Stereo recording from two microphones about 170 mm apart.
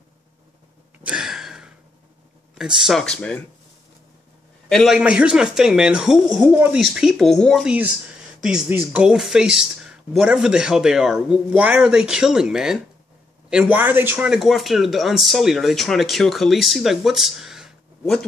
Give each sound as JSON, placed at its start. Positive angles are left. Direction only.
{"t": 1.0, "sound": "gasp", "side_deg": -5}
{"t": 2.5, "sound": "speech", "side_deg": 0}
{"t": 4.6, "sound": "speech", "side_deg": 0}